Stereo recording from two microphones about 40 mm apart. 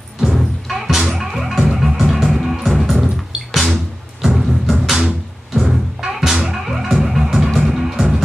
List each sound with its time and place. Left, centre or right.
0.2 s music: centre
4.9 s music: centre